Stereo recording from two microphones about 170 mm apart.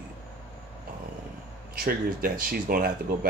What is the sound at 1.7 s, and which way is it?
Speech, 55° right (ahead or behind).